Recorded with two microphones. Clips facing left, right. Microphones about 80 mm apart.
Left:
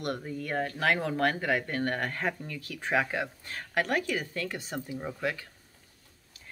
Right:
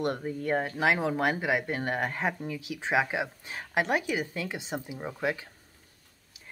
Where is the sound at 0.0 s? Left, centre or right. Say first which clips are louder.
Right 4 dB; right.